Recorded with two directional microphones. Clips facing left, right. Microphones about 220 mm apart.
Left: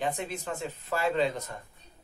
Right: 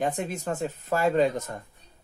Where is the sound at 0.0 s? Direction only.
45° right (ahead or behind).